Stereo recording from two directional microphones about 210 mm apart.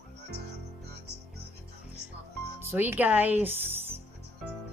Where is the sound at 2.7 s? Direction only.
10° right (ahead or behind).